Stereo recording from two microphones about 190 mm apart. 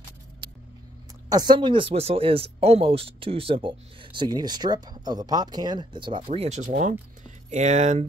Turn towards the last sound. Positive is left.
turn(degrees=-40)  # may be behind; listen again after turning